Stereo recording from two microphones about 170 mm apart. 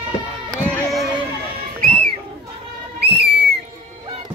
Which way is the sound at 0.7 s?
5° left (ahead or behind).